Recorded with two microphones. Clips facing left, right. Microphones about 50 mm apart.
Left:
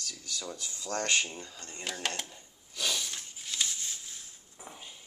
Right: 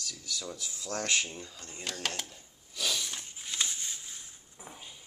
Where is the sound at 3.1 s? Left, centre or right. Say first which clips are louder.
Even; centre.